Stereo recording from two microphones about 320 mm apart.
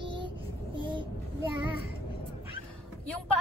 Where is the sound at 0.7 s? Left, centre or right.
Centre.